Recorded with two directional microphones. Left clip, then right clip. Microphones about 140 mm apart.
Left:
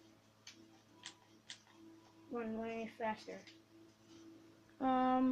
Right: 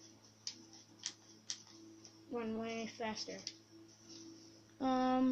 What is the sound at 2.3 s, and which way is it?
Speech, 15° left (ahead or behind).